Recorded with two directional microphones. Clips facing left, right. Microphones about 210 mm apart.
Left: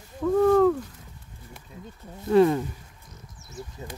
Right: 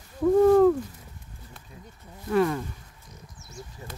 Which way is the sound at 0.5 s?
10° right (ahead or behind).